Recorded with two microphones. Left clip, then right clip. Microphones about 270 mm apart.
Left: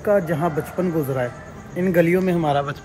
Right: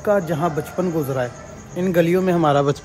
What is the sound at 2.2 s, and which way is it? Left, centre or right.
Speech, right.